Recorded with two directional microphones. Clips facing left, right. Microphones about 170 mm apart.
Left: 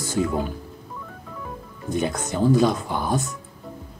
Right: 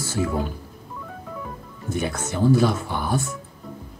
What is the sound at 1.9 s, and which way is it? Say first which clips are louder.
Speech: left 2 dB; 20° left (ahead or behind).